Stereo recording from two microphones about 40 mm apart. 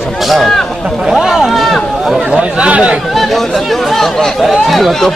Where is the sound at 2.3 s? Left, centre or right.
Right.